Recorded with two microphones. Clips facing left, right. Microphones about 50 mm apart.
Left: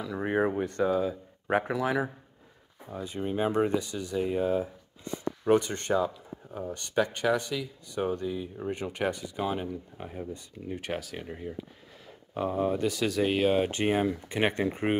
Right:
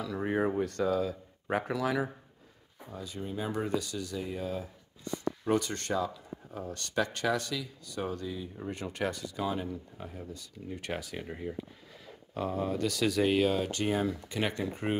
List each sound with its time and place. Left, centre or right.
0.0 s speech: left
3.7 s speech: centre
4.2 s speech: left
10.8 s speech: centre
12.4 s speech: centre
12.9 s speech: centre
13.6 s speech: left